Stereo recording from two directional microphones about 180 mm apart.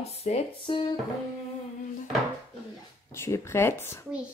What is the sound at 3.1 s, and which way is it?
Speech, 15° left (ahead or behind).